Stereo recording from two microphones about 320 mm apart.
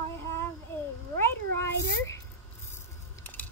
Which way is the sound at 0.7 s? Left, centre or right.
Centre.